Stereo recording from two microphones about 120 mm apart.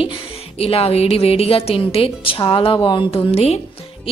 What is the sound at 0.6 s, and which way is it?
A woman's voice, 55° left (ahead or behind).